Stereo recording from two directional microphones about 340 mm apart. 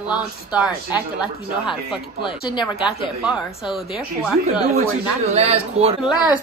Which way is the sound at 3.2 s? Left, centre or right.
Centre.